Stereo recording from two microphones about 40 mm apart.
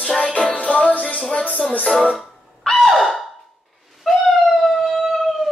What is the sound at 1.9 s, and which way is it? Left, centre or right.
Speech, centre.